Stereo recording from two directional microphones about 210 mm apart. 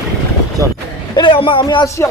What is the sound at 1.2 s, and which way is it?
Speech, 25° left (ahead or behind).